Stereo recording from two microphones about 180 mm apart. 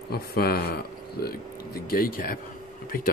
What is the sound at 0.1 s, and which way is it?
Speech, 60° left (ahead or behind).